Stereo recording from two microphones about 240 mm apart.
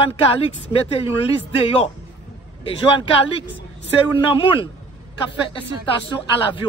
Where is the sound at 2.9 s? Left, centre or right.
Left.